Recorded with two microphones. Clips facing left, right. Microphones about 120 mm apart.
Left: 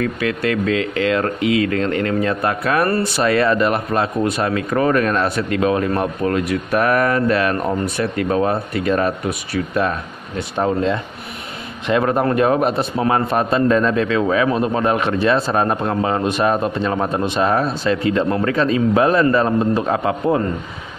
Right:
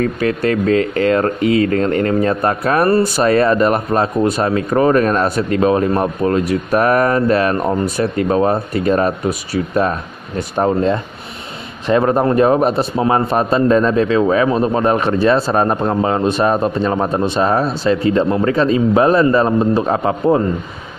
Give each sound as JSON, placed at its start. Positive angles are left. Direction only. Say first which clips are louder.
{"t": 0.0, "sound": "speech", "louder": "right 4 dB", "side_deg": -40}
{"t": 12.9, "sound": "a man's voice", "louder": "right 3 dB", "side_deg": -25}